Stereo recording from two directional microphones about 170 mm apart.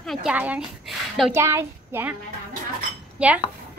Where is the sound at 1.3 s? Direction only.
15° right (ahead or behind).